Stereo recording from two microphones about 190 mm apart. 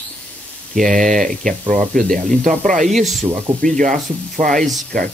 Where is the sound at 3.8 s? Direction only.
45° right (ahead or behind).